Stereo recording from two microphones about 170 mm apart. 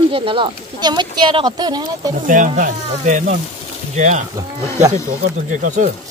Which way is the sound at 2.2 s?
50° right (ahead or behind).